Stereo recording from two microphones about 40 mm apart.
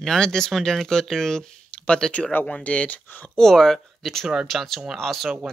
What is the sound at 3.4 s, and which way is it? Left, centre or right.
Speech, centre.